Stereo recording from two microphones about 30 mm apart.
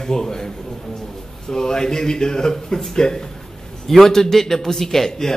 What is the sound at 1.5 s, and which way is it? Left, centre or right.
A man's voice, left.